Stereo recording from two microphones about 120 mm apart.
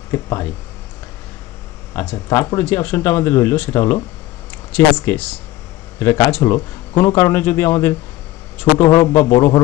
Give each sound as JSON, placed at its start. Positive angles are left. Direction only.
{"t": 0.1, "sound": "speech", "side_deg": 25}
{"t": 2.2, "sound": "speech", "side_deg": 25}